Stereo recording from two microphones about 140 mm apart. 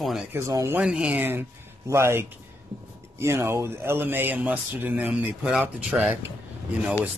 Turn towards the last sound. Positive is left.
turn(degrees=-10)  # may be behind; listen again after turning